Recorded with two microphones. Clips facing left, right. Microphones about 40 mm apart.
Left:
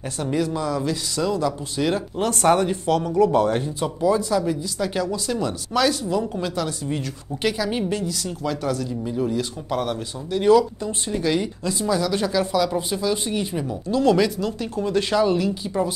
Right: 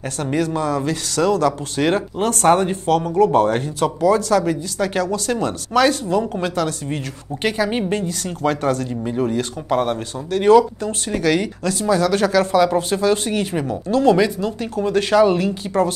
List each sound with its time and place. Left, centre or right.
0.2 s speech: right
1.9 s speech: right
3.8 s speech: right
9.0 s speech: right
10.8 s speech: right
13.6 s speech: right
14.9 s speech: right